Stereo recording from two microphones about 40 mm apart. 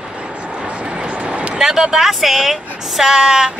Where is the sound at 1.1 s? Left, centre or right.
Right.